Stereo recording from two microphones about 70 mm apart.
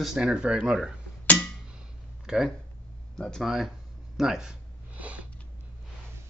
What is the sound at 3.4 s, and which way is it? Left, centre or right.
Speech, centre.